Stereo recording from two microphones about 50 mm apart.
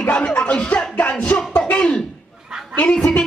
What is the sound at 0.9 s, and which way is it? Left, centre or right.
Music, left.